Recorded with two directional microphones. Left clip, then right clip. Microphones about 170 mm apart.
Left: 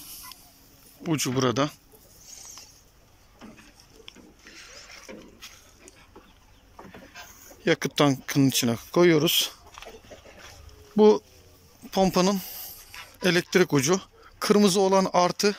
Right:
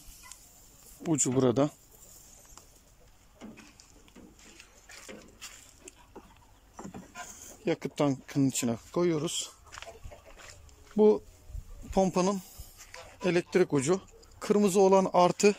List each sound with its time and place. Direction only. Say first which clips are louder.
1.0 s speech: left 2 dB; 20° right (ahead or behind)
7.6 s speech: left 7 dB; 5° right (ahead or behind)
11.0 s speech: left 5 dB; 10° right (ahead or behind)